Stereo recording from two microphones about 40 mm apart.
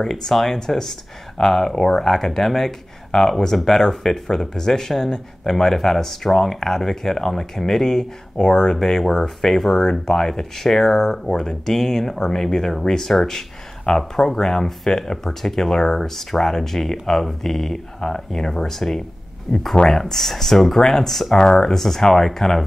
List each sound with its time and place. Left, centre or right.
0.0 s speech: centre
21.4 s speech: centre
21.7 s speech: centre